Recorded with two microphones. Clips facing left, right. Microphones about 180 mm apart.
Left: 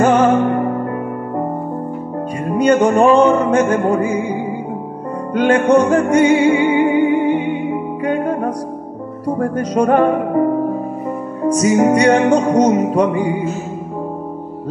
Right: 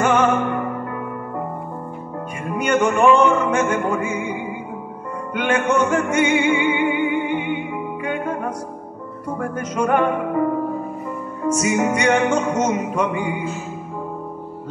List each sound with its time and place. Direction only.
0.0 s music: 35° left (ahead or behind)
2.4 s music: 35° left (ahead or behind)